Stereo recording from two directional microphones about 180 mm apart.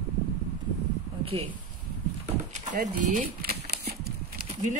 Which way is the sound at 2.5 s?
40° right (ahead or behind).